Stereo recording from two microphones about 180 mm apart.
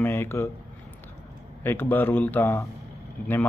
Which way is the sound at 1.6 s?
10° left (ahead or behind).